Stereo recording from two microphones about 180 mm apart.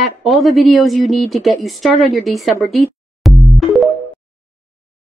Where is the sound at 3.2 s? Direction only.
Centre (ahead or behind).